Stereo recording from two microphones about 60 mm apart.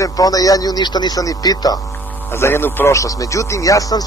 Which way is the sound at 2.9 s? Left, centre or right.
Left.